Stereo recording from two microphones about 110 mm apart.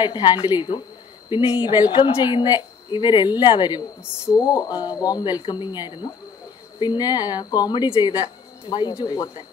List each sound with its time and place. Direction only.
0.0 s a woman's voice: 40° left (ahead or behind)